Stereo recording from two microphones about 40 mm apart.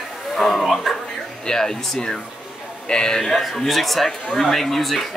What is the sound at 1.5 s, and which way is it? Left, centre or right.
Speech, centre.